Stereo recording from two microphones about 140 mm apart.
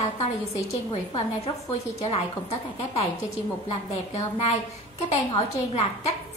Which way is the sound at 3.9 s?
50° left (ahead or behind).